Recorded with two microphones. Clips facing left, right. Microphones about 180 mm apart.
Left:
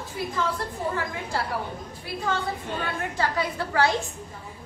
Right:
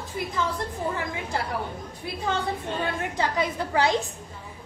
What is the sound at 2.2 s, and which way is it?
A woman's voice, 20° right (ahead or behind).